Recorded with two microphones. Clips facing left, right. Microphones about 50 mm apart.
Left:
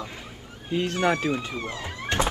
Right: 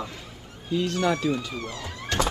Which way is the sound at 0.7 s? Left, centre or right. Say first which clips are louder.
Left 1 dB; left.